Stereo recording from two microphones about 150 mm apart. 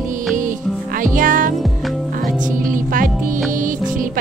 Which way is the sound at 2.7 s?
65° right (ahead or behind).